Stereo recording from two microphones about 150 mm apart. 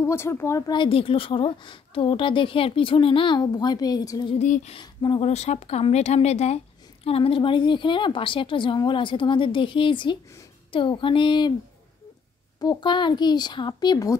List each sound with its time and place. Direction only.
0.0 s speech: 15° left (ahead or behind)
4.4 s speech: 50° left (ahead or behind)
4.7 s speech: 30° left (ahead or behind)
5.2 s speech: 45° left (ahead or behind)
12.5 s speech: 30° left (ahead or behind)